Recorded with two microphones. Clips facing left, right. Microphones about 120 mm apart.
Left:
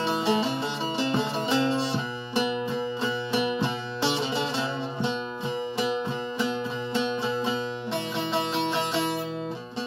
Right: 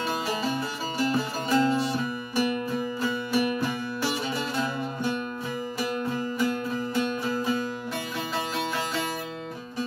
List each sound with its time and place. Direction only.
0.0 s music: 25° left (ahead or behind)
7.0 s music: 25° left (ahead or behind)